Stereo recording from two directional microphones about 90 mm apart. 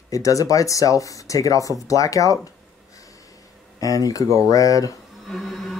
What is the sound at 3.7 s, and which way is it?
Speech, 40° left (ahead or behind).